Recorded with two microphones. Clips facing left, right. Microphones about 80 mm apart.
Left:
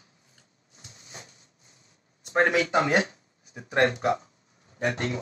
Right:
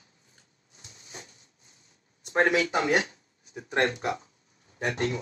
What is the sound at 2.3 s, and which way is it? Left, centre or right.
Speech, left.